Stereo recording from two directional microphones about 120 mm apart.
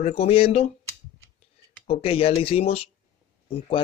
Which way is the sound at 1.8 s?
55° left (ahead or behind).